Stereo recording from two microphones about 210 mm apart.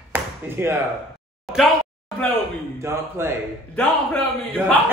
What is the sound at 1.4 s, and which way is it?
Speech, centre (ahead or behind).